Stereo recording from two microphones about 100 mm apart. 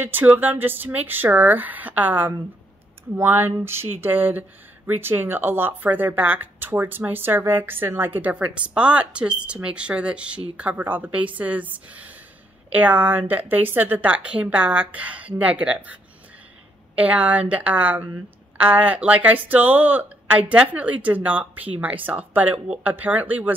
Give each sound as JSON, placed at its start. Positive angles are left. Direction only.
{"t": 0.0, "sound": "a woman's voice", "side_deg": -20}